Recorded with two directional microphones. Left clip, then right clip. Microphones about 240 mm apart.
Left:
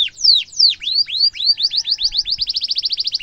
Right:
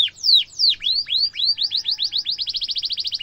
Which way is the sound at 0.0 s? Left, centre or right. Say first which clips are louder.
Left 2 dB; centre.